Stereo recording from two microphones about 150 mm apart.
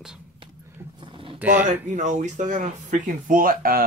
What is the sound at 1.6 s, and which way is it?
Speech, 55° right (ahead or behind).